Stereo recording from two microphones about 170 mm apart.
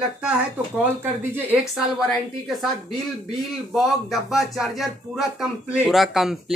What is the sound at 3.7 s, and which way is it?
Speech, centre (ahead or behind).